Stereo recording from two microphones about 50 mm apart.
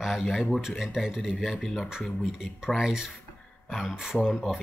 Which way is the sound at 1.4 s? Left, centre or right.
Centre.